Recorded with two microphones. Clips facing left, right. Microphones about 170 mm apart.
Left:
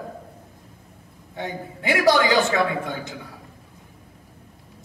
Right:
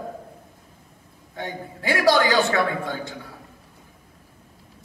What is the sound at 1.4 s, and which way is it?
A man's voice, 20° left (ahead or behind).